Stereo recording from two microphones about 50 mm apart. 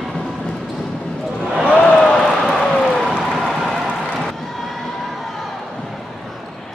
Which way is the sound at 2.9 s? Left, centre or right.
Centre.